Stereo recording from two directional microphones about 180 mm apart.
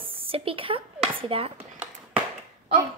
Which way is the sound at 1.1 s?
30° right (ahead or behind).